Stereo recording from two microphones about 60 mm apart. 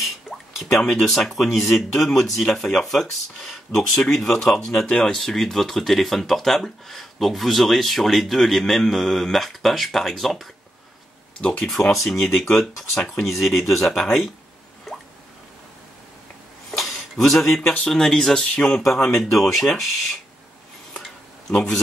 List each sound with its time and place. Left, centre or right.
0.3 s drip: centre
0.9 s speech: centre
11.9 s speech: centre
14.9 s drip: centre
16.7 s a sound: centre
17.2 s speech: centre
18.8 s speech: centre
21.5 s speech: centre